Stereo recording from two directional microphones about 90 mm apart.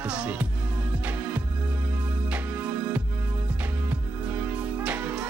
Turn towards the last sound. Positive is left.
turn(degrees=-20)  # may be behind; listen again after turning